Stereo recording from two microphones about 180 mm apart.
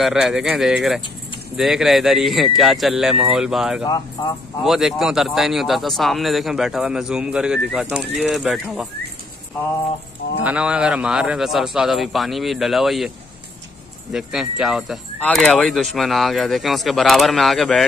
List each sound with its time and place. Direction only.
0.0 s speech: 5° right (ahead or behind)
3.8 s speech: 20° left (ahead or behind)
4.6 s speech: centre (ahead or behind)
10.4 s speech: 5° right (ahead or behind)
14.1 s speech: centre (ahead or behind)